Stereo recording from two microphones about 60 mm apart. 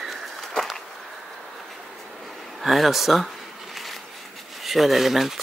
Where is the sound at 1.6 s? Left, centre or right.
Centre.